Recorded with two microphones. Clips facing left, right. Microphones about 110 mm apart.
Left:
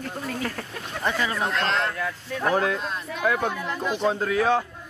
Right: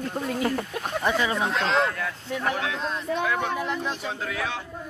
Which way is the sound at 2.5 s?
45° left (ahead or behind).